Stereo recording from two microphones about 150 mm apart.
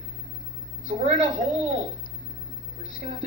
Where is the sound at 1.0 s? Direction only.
40° right (ahead or behind).